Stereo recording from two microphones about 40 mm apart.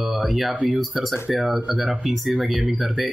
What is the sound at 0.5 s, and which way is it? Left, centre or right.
Speech, centre.